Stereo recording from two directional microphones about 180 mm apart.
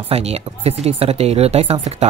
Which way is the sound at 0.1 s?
35° right (ahead or behind).